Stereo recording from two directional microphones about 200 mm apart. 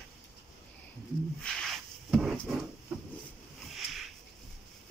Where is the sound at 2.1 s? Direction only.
Centre (ahead or behind).